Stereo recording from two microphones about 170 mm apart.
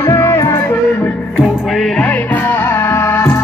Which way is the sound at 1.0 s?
Centre (ahead or behind).